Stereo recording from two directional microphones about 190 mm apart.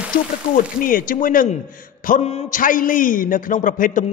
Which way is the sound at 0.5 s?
45° left (ahead or behind).